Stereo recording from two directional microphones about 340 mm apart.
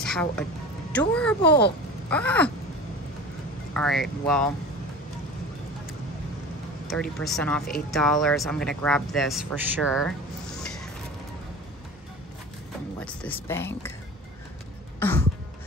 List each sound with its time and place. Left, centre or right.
0.0 s speech: centre
1.4 s speech: left
2.0 s speech: centre
3.7 s speech: centre
6.9 s speech: centre
13.0 s speech: centre
15.0 s cough: centre